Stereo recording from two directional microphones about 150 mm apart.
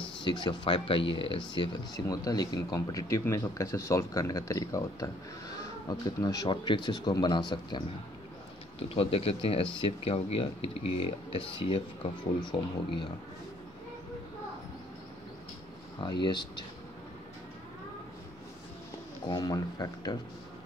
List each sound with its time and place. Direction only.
0.2 s speech: 30° left (ahead or behind)
16.0 s speech: 30° left (ahead or behind)
19.3 s speech: 25° left (ahead or behind)